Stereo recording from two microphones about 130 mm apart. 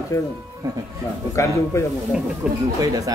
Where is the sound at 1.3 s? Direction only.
20° left (ahead or behind).